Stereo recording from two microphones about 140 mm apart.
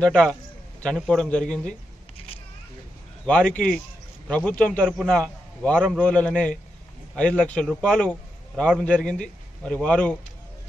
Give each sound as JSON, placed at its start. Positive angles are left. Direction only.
{"t": 0.0, "sound": "a man's voice", "side_deg": 5}
{"t": 2.1, "sound": "a sound", "side_deg": 45}
{"t": 3.3, "sound": "a man's voice", "side_deg": 10}